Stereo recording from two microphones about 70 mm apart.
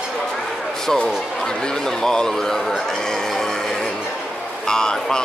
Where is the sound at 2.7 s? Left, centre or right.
Centre.